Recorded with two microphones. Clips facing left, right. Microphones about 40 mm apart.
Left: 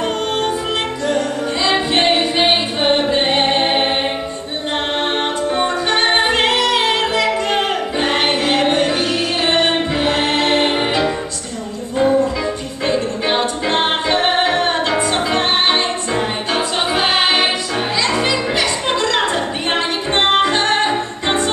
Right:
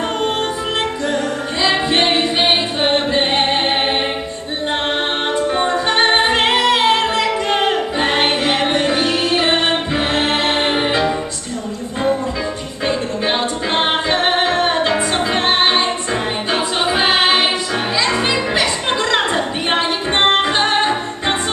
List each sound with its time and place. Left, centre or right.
1.6 s music: centre
5.2 s music: centre
12.8 s music: centre